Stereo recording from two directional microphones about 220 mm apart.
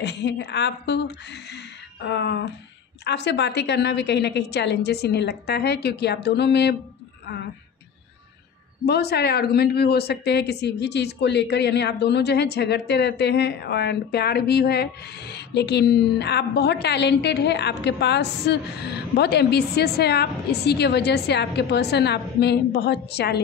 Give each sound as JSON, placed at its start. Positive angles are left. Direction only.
{"t": 0.0, "sound": "speech", "side_deg": 50}
{"t": 8.8, "sound": "speech", "side_deg": 45}